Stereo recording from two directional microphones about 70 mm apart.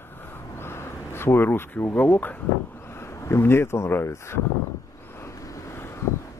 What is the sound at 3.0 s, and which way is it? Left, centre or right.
Speech, left.